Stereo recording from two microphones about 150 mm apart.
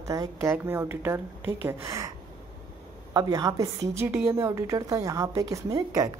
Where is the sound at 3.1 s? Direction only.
25° right (ahead or behind).